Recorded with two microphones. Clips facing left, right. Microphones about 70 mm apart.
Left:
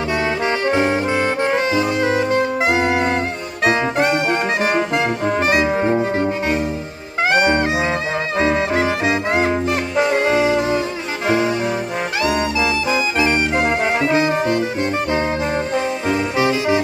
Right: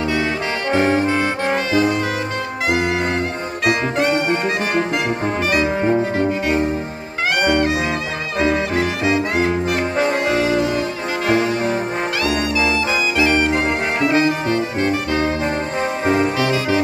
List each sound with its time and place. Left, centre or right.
0.8 s saxophone: centre
3.6 s music: left
5.7 s saxophone: centre
7.3 s brass instrument: left
9.7 s music: right
10.2 s brass instrument: left
12.2 s brass instrument: left
16.3 s saxophone: left